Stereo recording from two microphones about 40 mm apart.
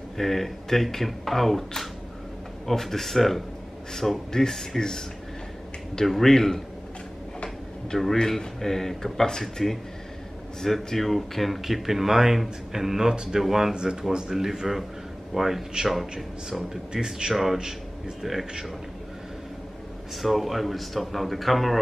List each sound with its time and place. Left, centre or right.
0.2 s speech: centre
13.4 s speech: centre
16.4 s speech: centre
17.3 s speech: centre
17.6 s a man's voice: centre
18.2 s speech: centre
20.2 s speech: centre